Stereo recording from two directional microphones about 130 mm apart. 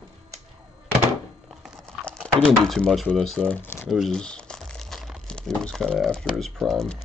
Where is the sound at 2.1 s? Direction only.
5° left (ahead or behind).